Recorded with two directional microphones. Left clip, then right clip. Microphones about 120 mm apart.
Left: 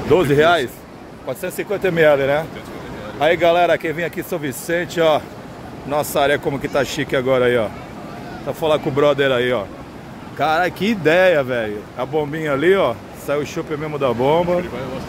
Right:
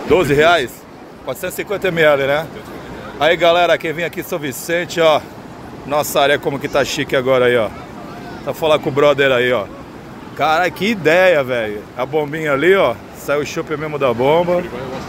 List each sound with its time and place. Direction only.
0.1 s speech: 20° left (ahead or behind)
12.0 s speech: 10° left (ahead or behind)